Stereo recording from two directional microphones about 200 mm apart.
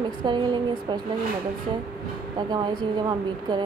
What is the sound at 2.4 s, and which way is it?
Speech, 20° right (ahead or behind).